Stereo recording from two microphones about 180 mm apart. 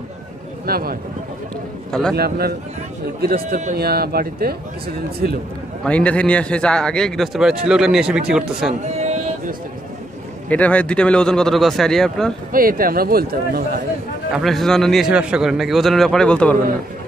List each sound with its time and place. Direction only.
0.7 s speech: 55° right (ahead or behind)
1.9 s a man's voice: 5° left (ahead or behind)
2.1 s speech: 60° right (ahead or behind)
5.9 s speech: 5° left (ahead or behind)
8.8 s a sound: 40° right (ahead or behind)
10.5 s speech: 10° left (ahead or behind)
12.5 s speech: 55° right (ahead or behind)
14.3 s speech: centre (ahead or behind)